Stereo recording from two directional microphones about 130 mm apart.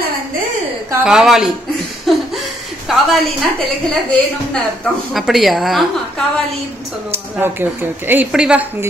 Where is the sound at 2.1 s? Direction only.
Centre (ahead or behind).